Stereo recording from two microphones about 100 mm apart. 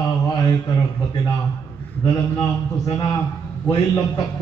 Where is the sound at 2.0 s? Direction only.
35° left (ahead or behind).